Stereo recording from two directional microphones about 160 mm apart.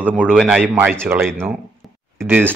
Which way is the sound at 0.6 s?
10° right (ahead or behind).